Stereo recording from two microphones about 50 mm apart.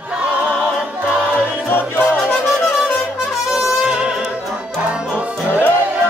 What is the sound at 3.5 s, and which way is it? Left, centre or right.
Music, centre.